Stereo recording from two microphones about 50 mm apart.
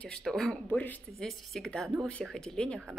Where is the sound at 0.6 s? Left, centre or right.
Left.